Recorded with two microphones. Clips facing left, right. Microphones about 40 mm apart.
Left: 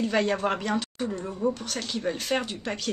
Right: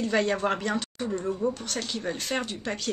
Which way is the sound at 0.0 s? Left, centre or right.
Centre.